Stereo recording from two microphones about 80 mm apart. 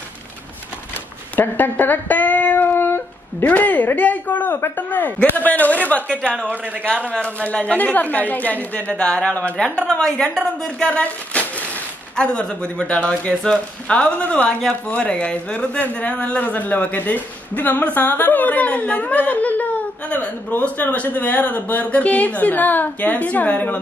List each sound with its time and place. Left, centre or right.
1.3 s speech: left
7.1 s a woman's voice: centre